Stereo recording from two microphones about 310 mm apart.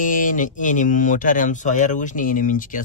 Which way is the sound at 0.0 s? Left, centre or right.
Left.